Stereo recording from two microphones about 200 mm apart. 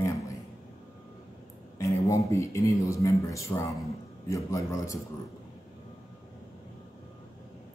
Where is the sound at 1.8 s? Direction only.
15° left (ahead or behind).